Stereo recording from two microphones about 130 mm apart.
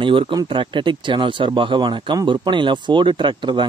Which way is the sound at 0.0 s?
40° right (ahead or behind).